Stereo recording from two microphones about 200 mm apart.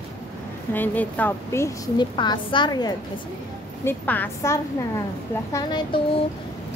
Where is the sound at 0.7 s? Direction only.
10° left (ahead or behind).